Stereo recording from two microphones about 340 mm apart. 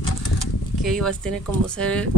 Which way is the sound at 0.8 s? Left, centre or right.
Centre.